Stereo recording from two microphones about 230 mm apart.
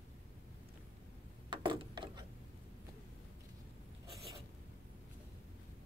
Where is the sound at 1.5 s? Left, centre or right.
Right.